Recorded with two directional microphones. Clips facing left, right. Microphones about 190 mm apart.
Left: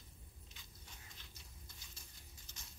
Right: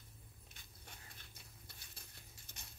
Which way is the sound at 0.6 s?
55° right (ahead or behind).